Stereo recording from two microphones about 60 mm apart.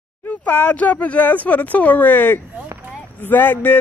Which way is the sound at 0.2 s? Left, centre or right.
Left.